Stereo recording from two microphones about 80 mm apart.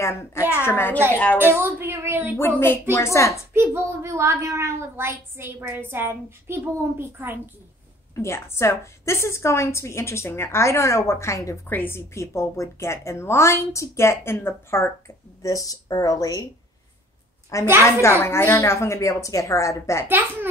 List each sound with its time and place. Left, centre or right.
0.0 s a woman's voice: left
1.4 s a sound: right
2.3 s a woman's voice: left
3.5 s a woman's voice: right
8.1 s a woman's voice: left
11.6 s a woman's voice: left
17.5 s a woman's voice: left